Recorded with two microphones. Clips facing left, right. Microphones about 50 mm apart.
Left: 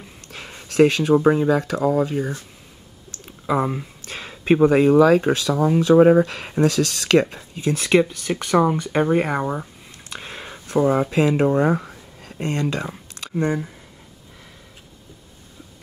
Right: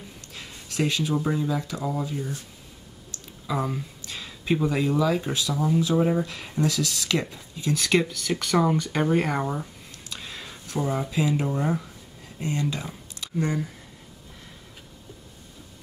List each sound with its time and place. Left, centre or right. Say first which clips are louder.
0.3 s speech: left 7 dB; left
3.4 s speech: left 7 dB; left
4.0 s speech: left 5 dB; left
8.0 s speech: left 6 dB; left
10.0 s a sound: left 5 dB; left